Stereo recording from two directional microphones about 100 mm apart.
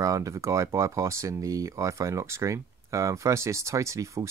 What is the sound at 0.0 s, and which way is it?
Speech, 35° right (ahead or behind).